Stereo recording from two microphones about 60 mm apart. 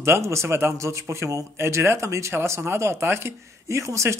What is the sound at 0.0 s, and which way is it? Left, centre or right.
Speech, right.